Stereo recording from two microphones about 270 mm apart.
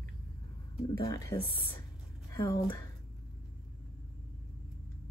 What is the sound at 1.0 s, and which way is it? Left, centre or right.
A woman's voice, centre.